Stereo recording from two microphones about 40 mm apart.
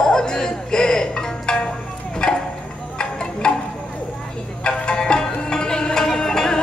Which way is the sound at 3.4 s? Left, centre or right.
Left.